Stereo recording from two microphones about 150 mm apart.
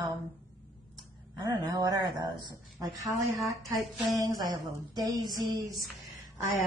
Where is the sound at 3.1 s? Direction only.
Centre (ahead or behind).